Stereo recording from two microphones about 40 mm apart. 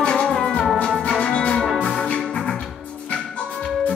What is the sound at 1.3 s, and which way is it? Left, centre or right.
Music, left.